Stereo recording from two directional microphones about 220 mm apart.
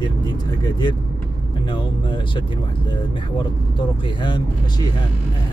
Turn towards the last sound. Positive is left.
turn(degrees=20)  # may be behind; listen again after turning